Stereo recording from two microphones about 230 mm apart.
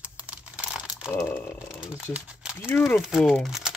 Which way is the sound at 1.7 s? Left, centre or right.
Centre.